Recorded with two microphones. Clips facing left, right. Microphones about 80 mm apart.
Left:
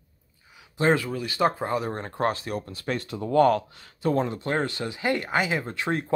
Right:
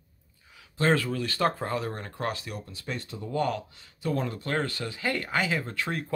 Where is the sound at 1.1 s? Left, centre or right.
Centre; by 3.9 s left.